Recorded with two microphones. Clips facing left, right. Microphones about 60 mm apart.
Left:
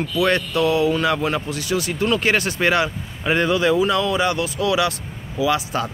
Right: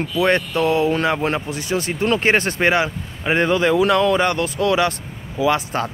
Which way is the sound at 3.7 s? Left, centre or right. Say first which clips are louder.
Right 3 dB; right.